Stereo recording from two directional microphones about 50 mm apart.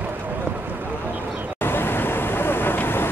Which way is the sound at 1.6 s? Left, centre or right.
Left.